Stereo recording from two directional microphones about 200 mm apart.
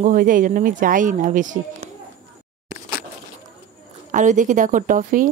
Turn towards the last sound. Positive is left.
turn(degrees=-40)  # may be behind; listen again after turning